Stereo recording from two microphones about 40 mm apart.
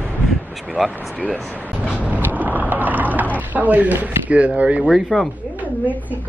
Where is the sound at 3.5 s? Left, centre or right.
Right.